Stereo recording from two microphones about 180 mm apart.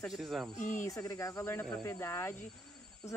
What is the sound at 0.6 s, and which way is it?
Speech, 45° left (ahead or behind).